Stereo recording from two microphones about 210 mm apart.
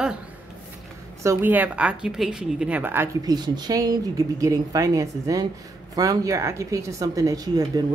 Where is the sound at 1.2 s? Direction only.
10° right (ahead or behind).